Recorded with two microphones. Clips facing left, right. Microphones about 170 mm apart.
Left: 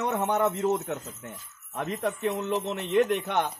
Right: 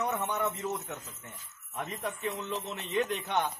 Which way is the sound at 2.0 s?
55° left (ahead or behind).